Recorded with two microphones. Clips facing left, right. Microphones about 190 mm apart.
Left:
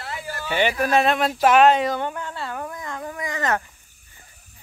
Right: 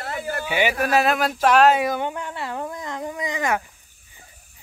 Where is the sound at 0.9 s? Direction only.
Centre (ahead or behind).